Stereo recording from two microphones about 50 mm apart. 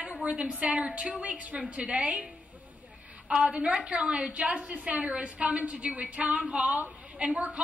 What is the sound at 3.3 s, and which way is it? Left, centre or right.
A woman's voice, right.